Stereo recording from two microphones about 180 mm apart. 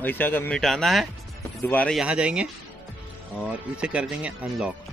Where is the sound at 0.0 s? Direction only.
10° left (ahead or behind).